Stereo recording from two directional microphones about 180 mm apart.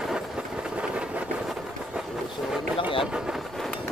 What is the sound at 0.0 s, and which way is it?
Vehicle, centre (ahead or behind).